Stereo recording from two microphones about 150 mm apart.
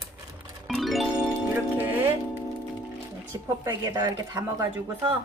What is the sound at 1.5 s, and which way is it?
Music, 15° right (ahead or behind).